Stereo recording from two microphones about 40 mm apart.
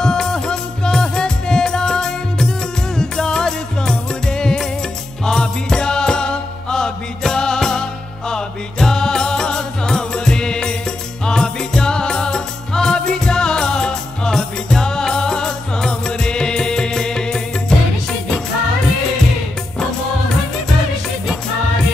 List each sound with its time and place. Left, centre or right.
0.0 s music: centre